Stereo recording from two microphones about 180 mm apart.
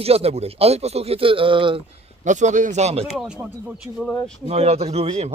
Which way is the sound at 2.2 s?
45° right (ahead or behind).